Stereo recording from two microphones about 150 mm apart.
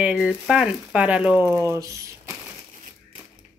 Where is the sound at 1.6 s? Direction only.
20° right (ahead or behind).